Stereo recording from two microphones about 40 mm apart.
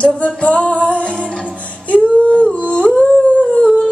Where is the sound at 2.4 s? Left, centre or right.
Left.